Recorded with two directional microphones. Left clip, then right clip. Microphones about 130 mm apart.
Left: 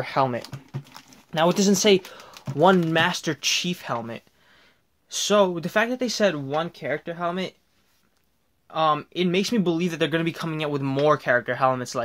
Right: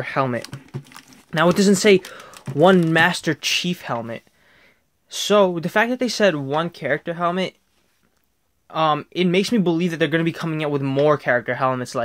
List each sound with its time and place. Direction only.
0.0 s speech: 20° right (ahead or behind)
1.1 s speech: 35° right (ahead or behind); by 7.5 s 60° right (ahead or behind)
8.6 s speech: 45° right (ahead or behind); by 12.0 s 30° right (ahead or behind)